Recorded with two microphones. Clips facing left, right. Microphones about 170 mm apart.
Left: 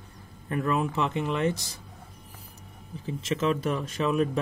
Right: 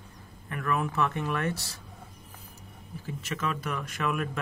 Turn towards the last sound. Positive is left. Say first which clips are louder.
# left 5 dB
turn(degrees=25)  # may be behind; listen again after turning